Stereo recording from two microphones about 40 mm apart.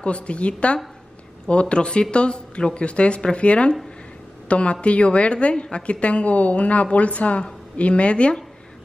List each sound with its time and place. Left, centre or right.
0.0 s a woman's voice: left